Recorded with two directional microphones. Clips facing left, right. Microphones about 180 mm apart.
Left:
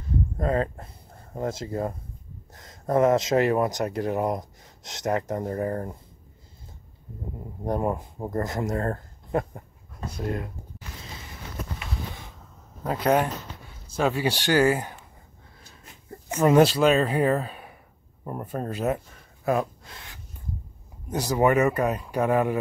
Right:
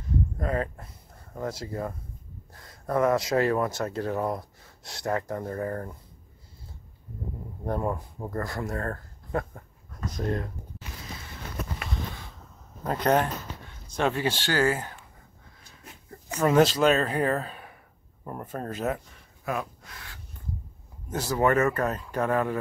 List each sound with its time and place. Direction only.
0.4 s speech: 25° left (ahead or behind)
7.6 s speech: 15° left (ahead or behind)
10.1 s speech: 15° left (ahead or behind)
12.8 s speech: 5° left (ahead or behind)
16.1 s speech: 20° left (ahead or behind)
19.4 s gasp: 35° left (ahead or behind)
21.1 s speech: 15° left (ahead or behind)